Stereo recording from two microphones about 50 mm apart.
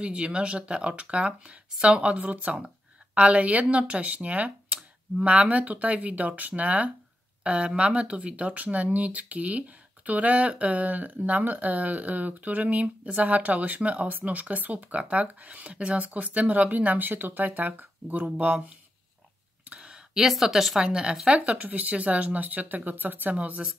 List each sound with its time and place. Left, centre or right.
0.0 s speech: right
19.7 s a sound: centre
20.2 s speech: centre
21.4 s speech: right